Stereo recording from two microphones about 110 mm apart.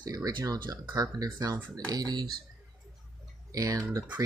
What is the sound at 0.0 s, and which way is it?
Speech, 35° right (ahead or behind).